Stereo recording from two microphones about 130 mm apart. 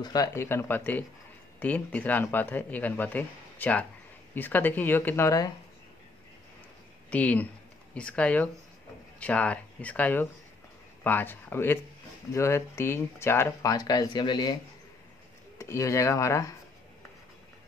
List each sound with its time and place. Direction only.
0.0 s speech: 30° left (ahead or behind)
7.1 s speech: 10° left (ahead or behind)